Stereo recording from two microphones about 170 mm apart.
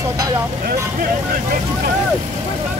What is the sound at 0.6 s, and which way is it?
Speech, 55° right (ahead or behind).